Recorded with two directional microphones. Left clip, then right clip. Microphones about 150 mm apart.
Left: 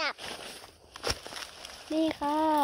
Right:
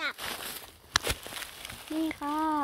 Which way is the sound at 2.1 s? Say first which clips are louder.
Left 2 dB; 60° right (ahead or behind).